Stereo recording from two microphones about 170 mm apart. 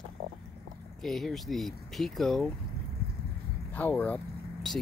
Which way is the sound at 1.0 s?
Centre (ahead or behind).